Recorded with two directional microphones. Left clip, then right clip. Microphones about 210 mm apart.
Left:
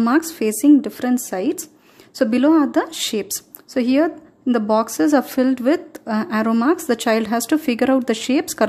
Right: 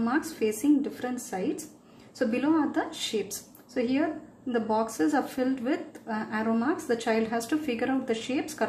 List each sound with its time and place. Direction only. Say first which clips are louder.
0.0 s a woman's voice: left 9 dB; 55° left (ahead or behind)